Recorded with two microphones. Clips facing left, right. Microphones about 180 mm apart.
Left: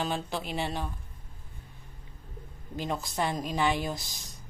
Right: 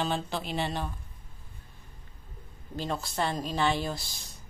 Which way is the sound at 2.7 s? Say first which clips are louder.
Even; 15° left (ahead or behind).